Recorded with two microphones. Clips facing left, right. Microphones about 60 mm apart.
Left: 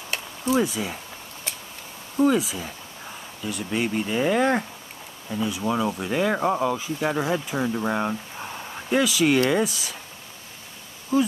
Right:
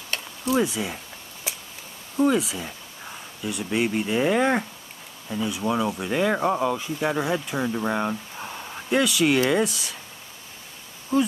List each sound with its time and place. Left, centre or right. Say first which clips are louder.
0.1 s a sound: left 1 dB; centre
2.1 s speech: left 1 dB; centre
11.1 s speech: even; centre